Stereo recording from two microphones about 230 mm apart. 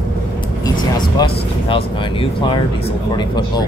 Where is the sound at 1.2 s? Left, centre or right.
Left.